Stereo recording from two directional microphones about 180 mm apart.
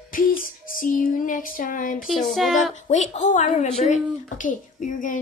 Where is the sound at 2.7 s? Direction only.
40° left (ahead or behind).